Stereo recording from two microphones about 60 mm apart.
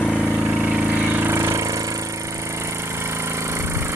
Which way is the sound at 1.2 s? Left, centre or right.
Right.